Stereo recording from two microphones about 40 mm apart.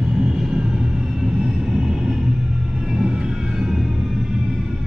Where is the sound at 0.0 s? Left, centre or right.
Centre.